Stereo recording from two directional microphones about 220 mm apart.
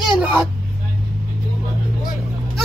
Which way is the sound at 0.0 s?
5° right (ahead or behind).